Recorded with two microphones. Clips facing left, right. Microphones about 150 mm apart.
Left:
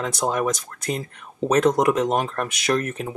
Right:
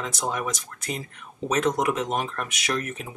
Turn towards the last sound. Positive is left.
turn(degrees=35)  # may be behind; listen again after turning